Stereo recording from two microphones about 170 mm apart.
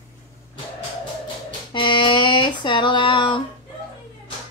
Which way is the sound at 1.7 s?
30° left (ahead or behind).